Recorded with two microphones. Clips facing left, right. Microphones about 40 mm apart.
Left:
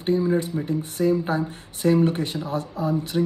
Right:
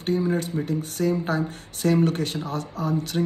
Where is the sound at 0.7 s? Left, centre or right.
Left.